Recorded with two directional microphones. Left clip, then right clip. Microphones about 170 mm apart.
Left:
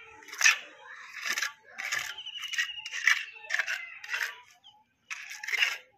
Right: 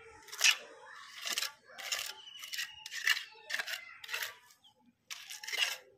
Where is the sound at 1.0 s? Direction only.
20° right (ahead or behind).